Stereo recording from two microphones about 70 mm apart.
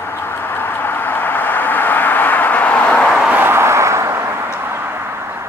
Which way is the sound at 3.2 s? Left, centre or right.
Right.